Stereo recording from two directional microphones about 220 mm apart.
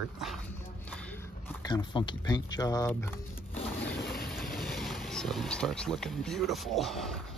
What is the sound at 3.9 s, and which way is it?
Vehicle, 50° left (ahead or behind).